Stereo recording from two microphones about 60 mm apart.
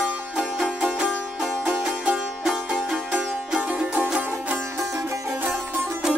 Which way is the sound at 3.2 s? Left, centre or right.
Centre.